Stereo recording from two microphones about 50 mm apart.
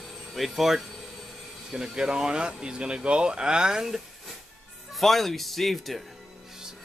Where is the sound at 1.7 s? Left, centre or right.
Centre.